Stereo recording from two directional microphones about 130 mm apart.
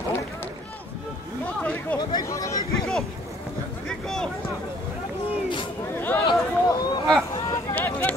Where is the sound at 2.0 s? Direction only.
30° left (ahead or behind).